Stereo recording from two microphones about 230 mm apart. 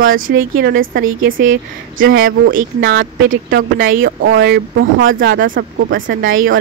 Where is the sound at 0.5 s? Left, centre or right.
Right.